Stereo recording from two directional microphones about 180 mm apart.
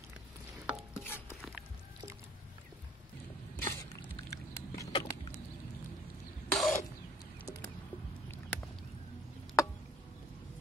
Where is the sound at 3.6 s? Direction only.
20° left (ahead or behind).